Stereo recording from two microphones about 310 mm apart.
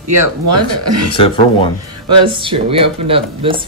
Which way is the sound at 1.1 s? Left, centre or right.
Centre.